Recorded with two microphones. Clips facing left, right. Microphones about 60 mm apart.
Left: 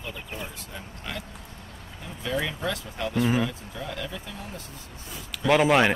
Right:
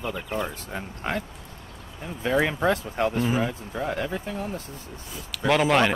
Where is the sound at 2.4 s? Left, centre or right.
Right.